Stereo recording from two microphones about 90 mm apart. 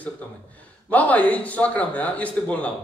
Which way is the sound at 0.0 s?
15° left (ahead or behind).